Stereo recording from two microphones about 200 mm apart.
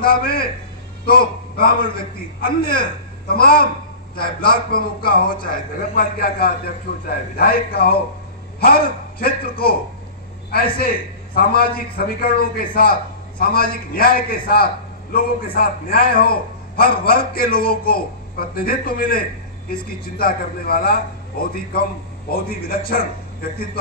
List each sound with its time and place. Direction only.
0.0 s a man's voice: 50° left (ahead or behind)